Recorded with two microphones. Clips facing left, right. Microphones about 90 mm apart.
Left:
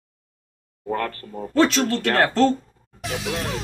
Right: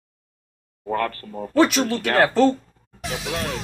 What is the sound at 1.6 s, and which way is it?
Speech, 5° right (ahead or behind).